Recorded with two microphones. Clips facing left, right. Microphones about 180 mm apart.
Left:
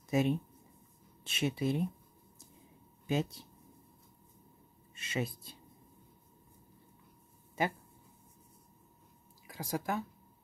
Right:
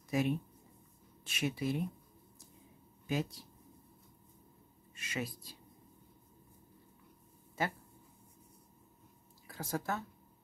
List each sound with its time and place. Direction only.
0.1 s speech: 25° left (ahead or behind)
3.1 s speech: 25° left (ahead or behind)
4.9 s speech: 25° left (ahead or behind)
7.6 s speech: 15° left (ahead or behind)
9.5 s speech: 10° left (ahead or behind)